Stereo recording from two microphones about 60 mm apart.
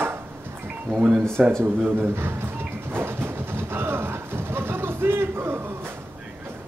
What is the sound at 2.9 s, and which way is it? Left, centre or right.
Vehicle, right.